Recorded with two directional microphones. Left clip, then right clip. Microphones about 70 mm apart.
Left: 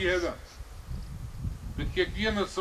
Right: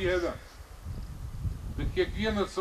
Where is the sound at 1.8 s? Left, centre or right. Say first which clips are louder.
Left 1 dB; left.